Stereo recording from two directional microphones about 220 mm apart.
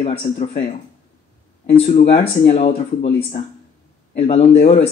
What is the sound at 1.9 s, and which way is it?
Speech, 30° left (ahead or behind).